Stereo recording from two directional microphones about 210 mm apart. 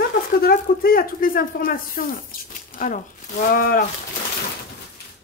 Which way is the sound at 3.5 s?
45° left (ahead or behind).